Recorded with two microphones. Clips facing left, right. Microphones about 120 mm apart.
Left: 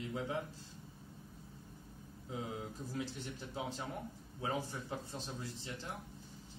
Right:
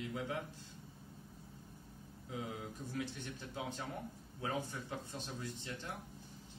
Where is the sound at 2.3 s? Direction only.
25° left (ahead or behind).